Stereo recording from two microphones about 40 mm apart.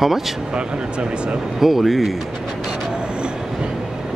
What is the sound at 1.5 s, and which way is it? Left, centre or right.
Speech, centre.